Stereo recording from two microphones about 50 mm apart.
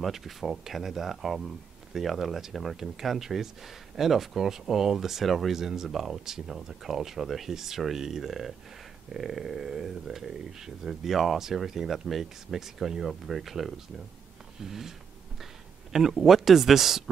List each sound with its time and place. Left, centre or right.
0.0 s speech: centre
14.6 s a sound: centre
15.9 s speech: centre